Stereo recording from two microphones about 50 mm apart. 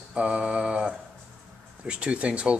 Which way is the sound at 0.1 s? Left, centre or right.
Right.